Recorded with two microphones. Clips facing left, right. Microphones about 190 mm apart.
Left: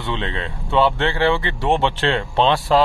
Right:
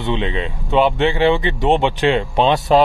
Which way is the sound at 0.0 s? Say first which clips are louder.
Right 5 dB; 15° right (ahead or behind).